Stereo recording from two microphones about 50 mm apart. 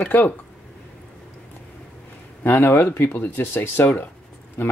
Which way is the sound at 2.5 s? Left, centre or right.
Left.